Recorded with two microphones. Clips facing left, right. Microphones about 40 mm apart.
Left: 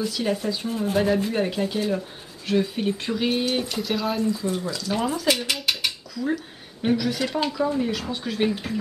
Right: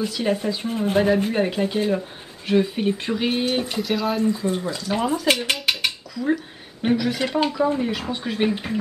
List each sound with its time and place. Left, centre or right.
0.1 s speech: centre
0.7 s speech: right
0.9 s speech: centre
3.7 s speech: centre
4.5 s speech: right
5.0 s speech: centre
5.7 s dishes: centre
7.3 s speech: centre